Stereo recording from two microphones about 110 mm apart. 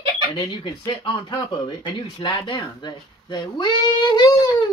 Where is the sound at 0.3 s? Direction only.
45° left (ahead or behind).